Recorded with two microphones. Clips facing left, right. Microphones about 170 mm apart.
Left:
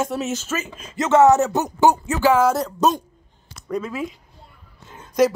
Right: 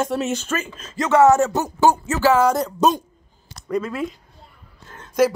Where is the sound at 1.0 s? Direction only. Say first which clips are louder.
Even; 20° left (ahead or behind); by 3.0 s centre (ahead or behind).